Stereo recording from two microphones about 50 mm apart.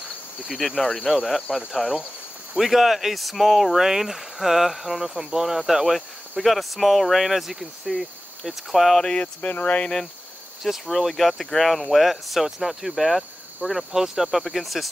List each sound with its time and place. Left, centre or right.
0.5 s speech: centre
9.2 s speech: left
9.8 s speech: centre
10.6 s speech: centre